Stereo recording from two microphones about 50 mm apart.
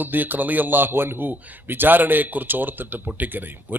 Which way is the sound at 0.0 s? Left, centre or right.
Right.